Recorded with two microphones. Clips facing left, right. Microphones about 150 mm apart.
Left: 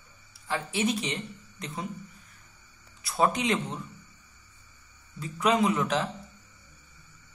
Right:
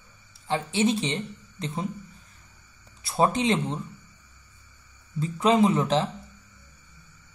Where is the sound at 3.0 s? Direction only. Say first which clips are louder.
Right 3 dB; 30° right (ahead or behind).